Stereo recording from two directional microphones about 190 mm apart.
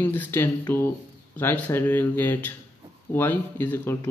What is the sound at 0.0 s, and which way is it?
Speech, 10° left (ahead or behind).